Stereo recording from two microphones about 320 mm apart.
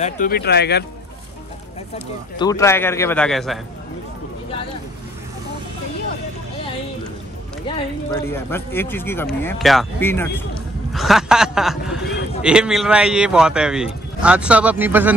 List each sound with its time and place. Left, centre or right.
0.0 s speech: left
2.3 s speech: centre
7.6 s a man's voice: centre